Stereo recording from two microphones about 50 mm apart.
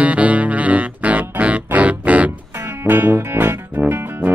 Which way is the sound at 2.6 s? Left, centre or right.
Right.